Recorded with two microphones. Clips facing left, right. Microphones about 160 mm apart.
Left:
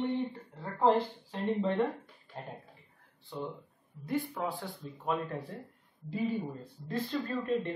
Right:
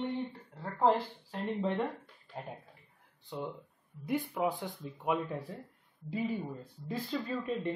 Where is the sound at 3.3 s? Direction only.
15° right (ahead or behind).